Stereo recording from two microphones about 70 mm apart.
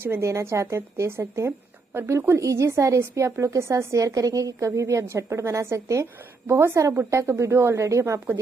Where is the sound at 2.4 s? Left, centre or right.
Right.